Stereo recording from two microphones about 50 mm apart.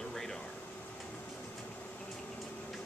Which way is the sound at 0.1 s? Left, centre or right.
Centre.